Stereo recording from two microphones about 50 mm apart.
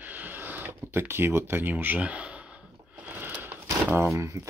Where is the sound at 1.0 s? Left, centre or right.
Right.